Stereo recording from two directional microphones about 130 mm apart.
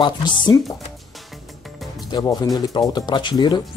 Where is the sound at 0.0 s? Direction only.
35° left (ahead or behind).